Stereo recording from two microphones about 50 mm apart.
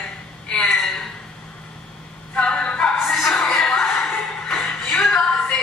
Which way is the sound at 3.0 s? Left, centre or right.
Centre.